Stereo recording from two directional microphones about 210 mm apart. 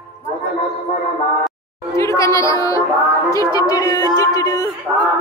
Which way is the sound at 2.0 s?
15° left (ahead or behind).